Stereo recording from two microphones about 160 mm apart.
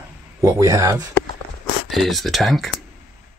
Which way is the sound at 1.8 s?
Centre (ahead or behind).